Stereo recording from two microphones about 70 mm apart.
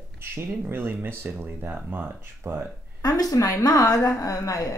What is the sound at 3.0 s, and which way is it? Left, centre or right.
A woman's voice, left.